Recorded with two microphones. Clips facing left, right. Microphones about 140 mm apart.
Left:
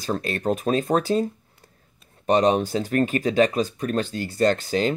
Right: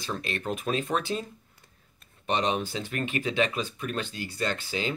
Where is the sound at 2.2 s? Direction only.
40° left (ahead or behind).